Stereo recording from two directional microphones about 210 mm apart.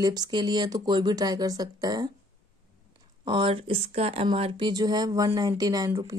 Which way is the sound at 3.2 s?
25° right (ahead or behind).